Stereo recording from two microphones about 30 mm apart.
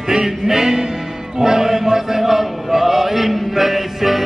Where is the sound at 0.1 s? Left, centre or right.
Centre.